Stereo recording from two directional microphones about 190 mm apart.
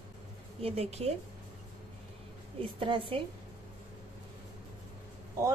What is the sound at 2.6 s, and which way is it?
Speech, 25° right (ahead or behind).